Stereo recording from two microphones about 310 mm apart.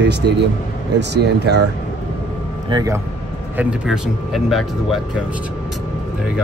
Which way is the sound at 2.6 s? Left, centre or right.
Centre.